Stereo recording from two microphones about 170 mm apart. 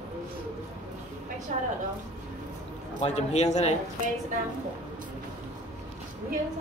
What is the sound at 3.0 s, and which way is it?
Speech, 40° left (ahead or behind).